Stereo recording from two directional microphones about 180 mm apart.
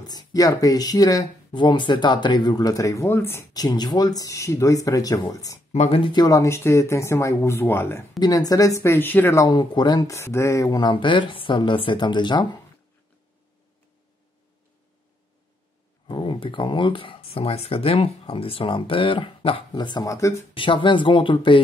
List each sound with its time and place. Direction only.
0.0 s speech: 20° left (ahead or behind)
5.7 s speech: 35° left (ahead or behind)
16.1 s speech: 30° left (ahead or behind)
20.5 s speech: 25° left (ahead or behind)